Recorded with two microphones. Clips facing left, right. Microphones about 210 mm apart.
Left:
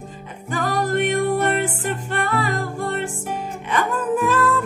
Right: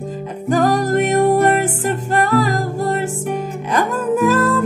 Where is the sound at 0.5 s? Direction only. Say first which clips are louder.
Right 7 dB; 40° right (ahead or behind).